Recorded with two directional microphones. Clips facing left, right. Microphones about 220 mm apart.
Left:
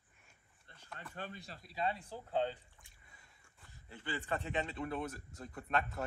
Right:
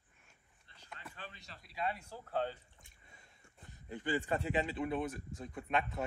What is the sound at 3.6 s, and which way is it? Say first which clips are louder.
Speech: right 7 dB; 20° right (ahead or behind).